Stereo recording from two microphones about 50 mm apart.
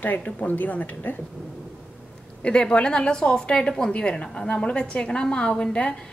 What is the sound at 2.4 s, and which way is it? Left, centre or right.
A woman's voice, left.